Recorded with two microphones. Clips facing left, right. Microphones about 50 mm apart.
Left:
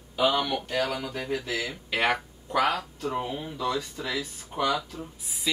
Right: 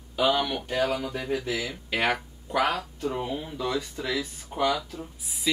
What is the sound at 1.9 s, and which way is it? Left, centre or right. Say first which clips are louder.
Speech: even; centre.